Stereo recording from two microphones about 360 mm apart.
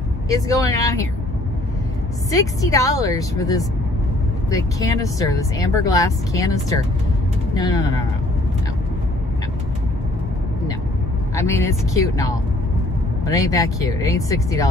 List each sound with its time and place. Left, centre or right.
0.3 s speech: centre
2.3 s speech: centre
11.3 s speech: centre
13.3 s speech: centre